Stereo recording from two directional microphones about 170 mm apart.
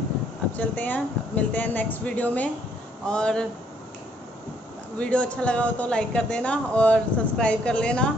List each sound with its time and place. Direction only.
0.5 s speech: 10° left (ahead or behind)
4.9 s speech: 5° left (ahead or behind)